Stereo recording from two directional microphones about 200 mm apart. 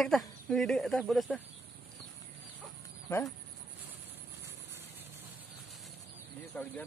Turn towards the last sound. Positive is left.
turn(degrees=10)  # may be behind; listen again after turning